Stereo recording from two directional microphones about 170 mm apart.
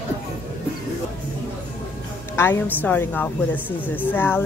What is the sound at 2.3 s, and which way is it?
A woman's voice, 10° left (ahead or behind).